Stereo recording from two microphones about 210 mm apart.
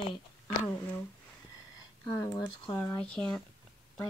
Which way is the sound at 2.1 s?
15° left (ahead or behind).